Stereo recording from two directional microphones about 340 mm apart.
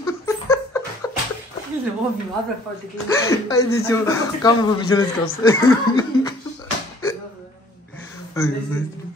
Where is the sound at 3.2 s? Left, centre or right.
Centre.